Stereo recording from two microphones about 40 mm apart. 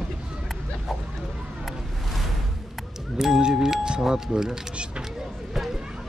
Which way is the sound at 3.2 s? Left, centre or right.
Centre.